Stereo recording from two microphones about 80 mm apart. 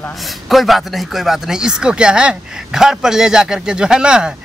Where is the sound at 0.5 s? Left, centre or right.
Centre.